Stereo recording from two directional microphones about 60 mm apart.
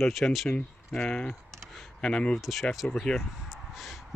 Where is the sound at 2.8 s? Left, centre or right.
Centre.